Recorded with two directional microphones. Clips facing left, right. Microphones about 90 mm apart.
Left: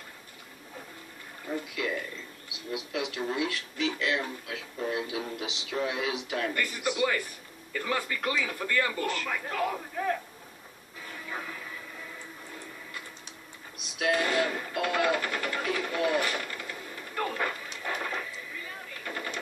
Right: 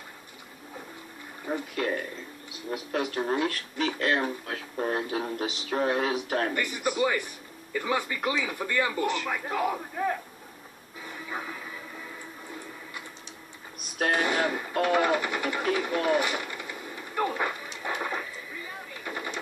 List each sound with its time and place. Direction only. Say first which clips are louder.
1.5 s speech: right 3 dB; 45° right (ahead or behind)
6.5 s speech: right 2 dB; 15° right (ahead or behind)
11.1 s music: right 2 dB; 15° right (ahead or behind)
13.7 s music: right 1 dB; 45° right (ahead or behind)
14.2 s speech: right 1 dB; 15° right (ahead or behind)
15.8 s sewing machine: right 1 dB; 15° right (ahead or behind)
19.0 s machine gun: right 1 dB; 15° right (ahead or behind)